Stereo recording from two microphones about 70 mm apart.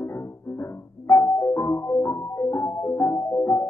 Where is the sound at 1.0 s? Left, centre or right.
Left.